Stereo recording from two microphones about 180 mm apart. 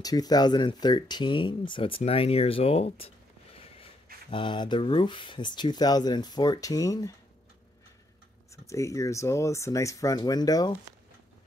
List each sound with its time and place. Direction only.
0.0 s speech: 20° left (ahead or behind)
4.3 s speech: 25° left (ahead or behind)
8.6 s speech: 15° left (ahead or behind)